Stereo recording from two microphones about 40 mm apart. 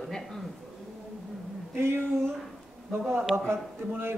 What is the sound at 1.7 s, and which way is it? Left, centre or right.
Speech, right.